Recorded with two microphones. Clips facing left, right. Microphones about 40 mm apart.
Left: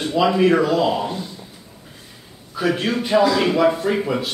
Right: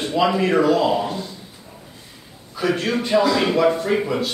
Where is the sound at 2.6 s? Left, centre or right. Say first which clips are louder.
Even; centre.